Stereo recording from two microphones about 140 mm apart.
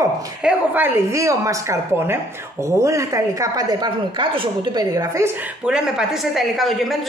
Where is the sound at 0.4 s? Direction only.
10° right (ahead or behind); by 4.8 s 35° right (ahead or behind).